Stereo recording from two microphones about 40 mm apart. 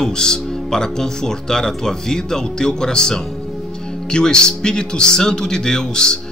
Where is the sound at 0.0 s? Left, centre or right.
Centre.